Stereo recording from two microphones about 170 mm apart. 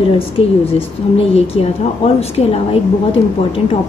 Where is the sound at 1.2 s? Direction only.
35° left (ahead or behind).